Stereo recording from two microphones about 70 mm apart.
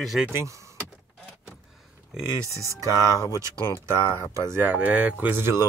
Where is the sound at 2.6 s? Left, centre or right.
Right.